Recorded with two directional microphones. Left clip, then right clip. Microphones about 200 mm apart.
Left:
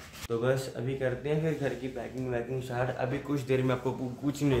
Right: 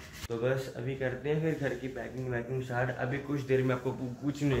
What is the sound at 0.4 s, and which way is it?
Speech, 15° left (ahead or behind).